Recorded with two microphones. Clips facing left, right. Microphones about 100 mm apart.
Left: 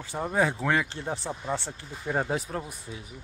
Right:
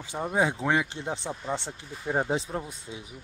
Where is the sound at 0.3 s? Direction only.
15° right (ahead or behind).